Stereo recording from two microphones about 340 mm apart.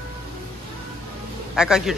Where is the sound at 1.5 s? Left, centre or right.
Centre.